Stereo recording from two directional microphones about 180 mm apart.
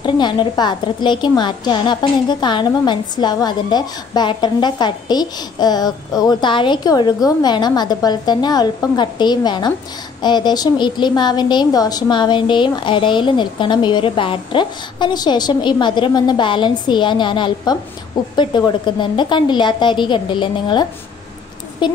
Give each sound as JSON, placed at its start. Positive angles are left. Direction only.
{"t": 0.0, "sound": "a woman's voice", "side_deg": 25}